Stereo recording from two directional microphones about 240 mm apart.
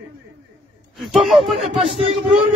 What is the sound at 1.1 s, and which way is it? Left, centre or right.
Speech, centre.